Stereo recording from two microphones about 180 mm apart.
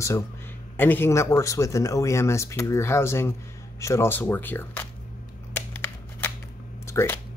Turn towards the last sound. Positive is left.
turn(degrees=15)  # may be behind; listen again after turning